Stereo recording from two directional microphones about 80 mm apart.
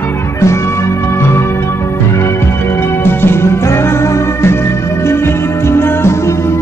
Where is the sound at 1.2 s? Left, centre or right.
Left.